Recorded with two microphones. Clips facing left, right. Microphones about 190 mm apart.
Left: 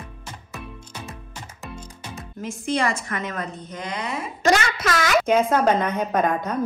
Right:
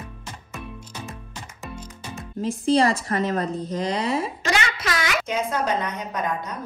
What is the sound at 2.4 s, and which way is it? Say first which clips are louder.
A woman's voice: right 5 dB; 35° right (ahead or behind).